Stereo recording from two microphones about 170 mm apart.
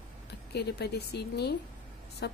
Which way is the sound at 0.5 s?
75° left (ahead or behind).